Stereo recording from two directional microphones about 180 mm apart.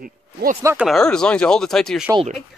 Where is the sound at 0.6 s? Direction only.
15° right (ahead or behind).